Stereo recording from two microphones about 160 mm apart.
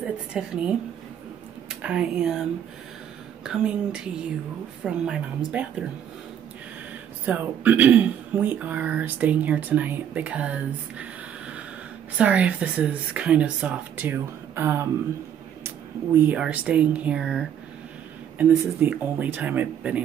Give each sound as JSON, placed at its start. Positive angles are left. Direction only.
{"t": 0.0, "sound": "speech", "side_deg": -5}
{"t": 1.8, "sound": "speech", "side_deg": -5}
{"t": 3.4, "sound": "speech", "side_deg": -5}
{"t": 7.2, "sound": "speech", "side_deg": -10}
{"t": 16.2, "sound": "speech", "side_deg": -10}